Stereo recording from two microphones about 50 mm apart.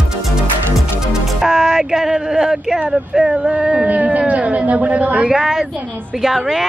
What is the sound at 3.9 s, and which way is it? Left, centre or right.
Speech, right.